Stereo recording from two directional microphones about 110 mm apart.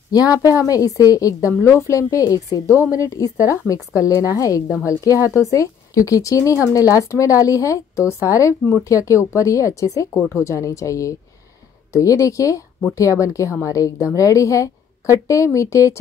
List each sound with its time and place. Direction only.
0.1 s a woman's voice: 35° left (ahead or behind)